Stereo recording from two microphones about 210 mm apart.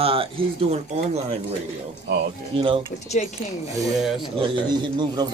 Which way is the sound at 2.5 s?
25° right (ahead or behind).